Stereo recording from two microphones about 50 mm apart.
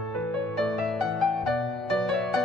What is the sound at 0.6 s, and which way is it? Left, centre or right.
Music, centre.